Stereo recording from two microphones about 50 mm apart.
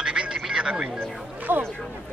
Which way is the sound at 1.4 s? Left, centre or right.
Right.